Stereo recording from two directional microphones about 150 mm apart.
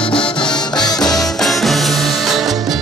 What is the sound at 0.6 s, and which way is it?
Music, 30° left (ahead or behind).